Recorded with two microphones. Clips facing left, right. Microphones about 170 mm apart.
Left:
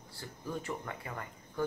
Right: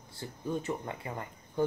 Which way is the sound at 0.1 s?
20° right (ahead or behind).